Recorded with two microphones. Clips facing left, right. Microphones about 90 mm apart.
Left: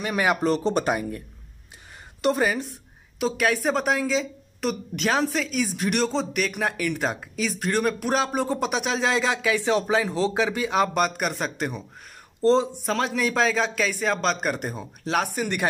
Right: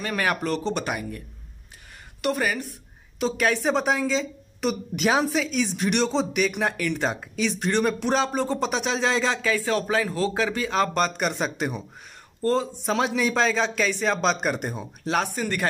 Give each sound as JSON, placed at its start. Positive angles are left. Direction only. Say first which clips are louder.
{"t": 0.0, "sound": "speech", "louder": "left 2 dB", "side_deg": 15}
{"t": 0.4, "sound": "speech", "louder": "left 4 dB", "side_deg": 35}
{"t": 2.2, "sound": "a woman's voice", "louder": "left 3 dB", "side_deg": 25}
{"t": 3.2, "sound": "a woman's voice", "louder": "even", "side_deg": 5}
{"t": 12.4, "sound": "speech", "louder": "left 4 dB", "side_deg": 20}
{"t": 12.8, "sound": "a woman's voice", "louder": "right 1 dB", "side_deg": -5}
{"t": 15.3, "sound": "speech", "louder": "left 1 dB", "side_deg": 10}